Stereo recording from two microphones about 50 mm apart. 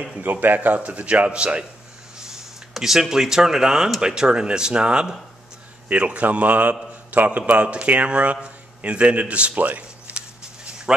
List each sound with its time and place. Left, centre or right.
0.2 s speech: right
0.7 s a man's voice: right
2.1 s power windows: centre
2.7 s a man's voice: centre; by 9.5 s right
9.6 s a sound: right